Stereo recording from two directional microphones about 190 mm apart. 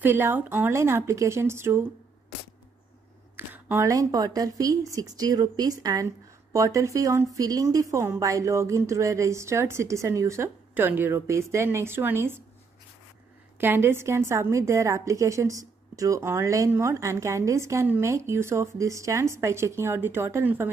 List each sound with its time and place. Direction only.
0.0 s a woman's voice: 10° right (ahead or behind)
3.3 s a woman's voice: 10° right (ahead or behind)
13.6 s a woman's voice: 10° right (ahead or behind)